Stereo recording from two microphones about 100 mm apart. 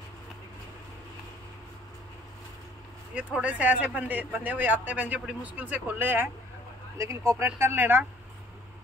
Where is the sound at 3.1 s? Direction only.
15° right (ahead or behind).